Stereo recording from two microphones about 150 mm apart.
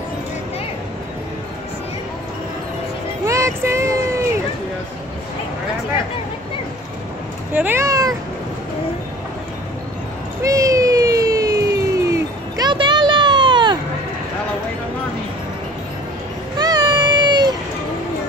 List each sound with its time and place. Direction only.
3.3 s child singing: 20° right (ahead or behind)
7.5 s cat: 15° right (ahead or behind)
10.4 s a sound: 20° right (ahead or behind)
16.5 s baby cry: 30° right (ahead or behind)